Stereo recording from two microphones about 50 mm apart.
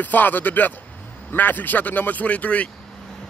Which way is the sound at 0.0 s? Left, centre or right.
Left.